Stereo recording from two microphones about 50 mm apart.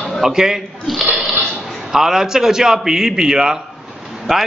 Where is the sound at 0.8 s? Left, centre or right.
Centre.